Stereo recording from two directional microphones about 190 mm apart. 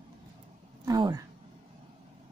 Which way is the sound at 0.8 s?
20° right (ahead or behind).